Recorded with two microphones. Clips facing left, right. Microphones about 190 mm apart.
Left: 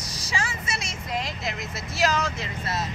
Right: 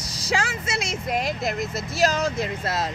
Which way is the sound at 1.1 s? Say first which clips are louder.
Right 5 dB; 55° right (ahead or behind).